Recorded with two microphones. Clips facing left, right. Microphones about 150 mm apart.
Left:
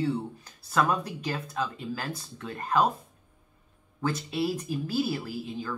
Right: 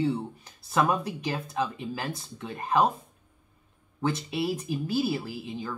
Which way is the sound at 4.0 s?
20° right (ahead or behind).